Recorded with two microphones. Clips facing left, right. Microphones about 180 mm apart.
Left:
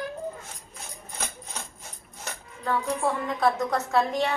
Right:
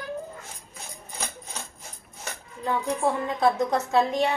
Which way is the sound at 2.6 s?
20° right (ahead or behind).